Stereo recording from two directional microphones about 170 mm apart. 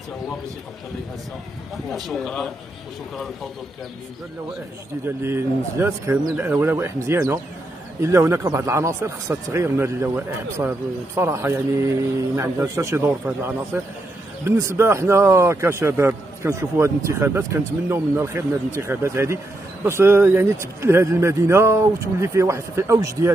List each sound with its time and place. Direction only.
1.9 s speech: centre (ahead or behind)
5.0 s a man's voice: 15° right (ahead or behind)
14.8 s a man's voice: 15° right (ahead or behind)